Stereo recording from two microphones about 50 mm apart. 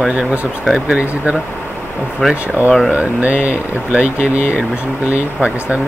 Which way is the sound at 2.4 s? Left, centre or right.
Right.